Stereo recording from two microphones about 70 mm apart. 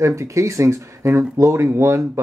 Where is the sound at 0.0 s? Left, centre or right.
Right.